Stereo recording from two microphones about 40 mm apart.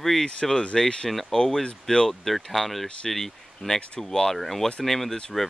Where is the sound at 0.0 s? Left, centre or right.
Centre.